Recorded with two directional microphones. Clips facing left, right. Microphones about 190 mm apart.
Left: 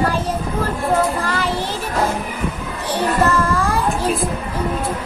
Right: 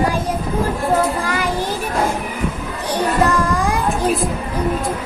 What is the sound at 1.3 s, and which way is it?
Child singing, 10° right (ahead or behind).